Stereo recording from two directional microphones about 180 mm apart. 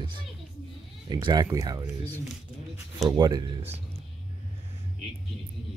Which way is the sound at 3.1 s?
20° right (ahead or behind).